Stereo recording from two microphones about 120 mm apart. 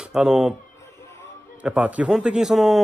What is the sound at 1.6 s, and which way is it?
A man's voice, 10° right (ahead or behind).